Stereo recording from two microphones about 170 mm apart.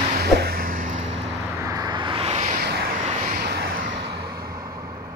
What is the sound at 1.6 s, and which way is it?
Vehicle, 20° right (ahead or behind).